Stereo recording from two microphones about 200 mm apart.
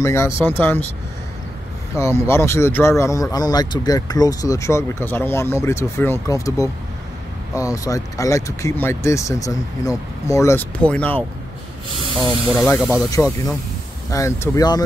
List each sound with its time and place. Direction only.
0.0 s speech: 15° left (ahead or behind)
2.0 s speech: 15° left (ahead or behind)
13.1 s speech: 15° left (ahead or behind)